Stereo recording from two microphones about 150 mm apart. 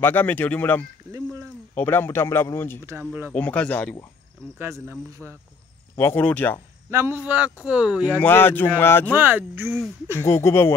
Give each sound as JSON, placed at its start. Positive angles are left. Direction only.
{"t": 0.0, "sound": "a man's voice", "side_deg": 15}
{"t": 2.9, "sound": "speech", "side_deg": -15}
{"t": 3.3, "sound": "a man's voice", "side_deg": 10}
{"t": 4.6, "sound": "speech", "side_deg": -15}
{"t": 5.2, "sound": "speech", "side_deg": 0}
{"t": 5.9, "sound": "a man's voice", "side_deg": 15}
{"t": 6.9, "sound": "speech", "side_deg": -15}
{"t": 8.2, "sound": "a man's voice", "side_deg": 15}
{"t": 9.1, "sound": "speech", "side_deg": -10}
{"t": 10.2, "sound": "a man's voice", "side_deg": 15}